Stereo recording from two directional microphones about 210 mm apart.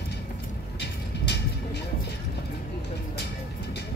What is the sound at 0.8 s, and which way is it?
Vehicle, 55° left (ahead or behind).